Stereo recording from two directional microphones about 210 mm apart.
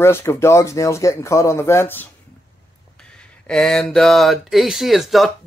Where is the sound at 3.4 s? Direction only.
5° left (ahead or behind).